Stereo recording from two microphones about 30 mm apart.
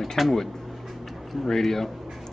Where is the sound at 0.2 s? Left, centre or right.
Centre.